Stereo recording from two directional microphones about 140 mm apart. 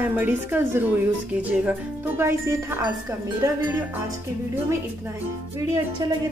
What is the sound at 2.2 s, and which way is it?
Speech, 20° right (ahead or behind).